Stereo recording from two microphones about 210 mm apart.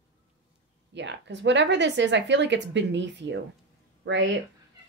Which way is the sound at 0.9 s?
55° right (ahead or behind).